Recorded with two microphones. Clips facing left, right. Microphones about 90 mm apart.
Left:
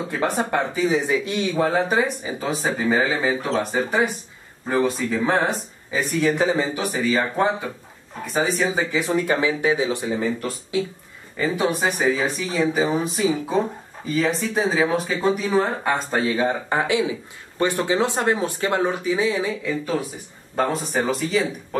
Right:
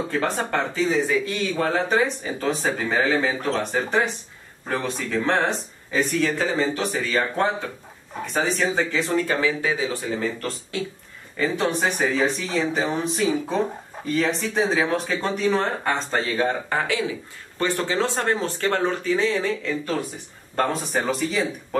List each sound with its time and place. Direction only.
0.4 s speech: 10° left (ahead or behind)
1.7 s speech: 5° left (ahead or behind)
6.2 s speech: 15° left (ahead or behind)
16.6 s speech: 20° left (ahead or behind); by 21.5 s centre (ahead or behind)